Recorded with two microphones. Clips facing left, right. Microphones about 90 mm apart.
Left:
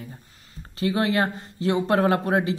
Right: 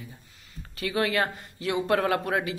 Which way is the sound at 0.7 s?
30° left (ahead or behind).